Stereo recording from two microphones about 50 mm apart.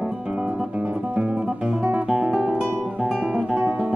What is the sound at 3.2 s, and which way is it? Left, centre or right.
Music, centre.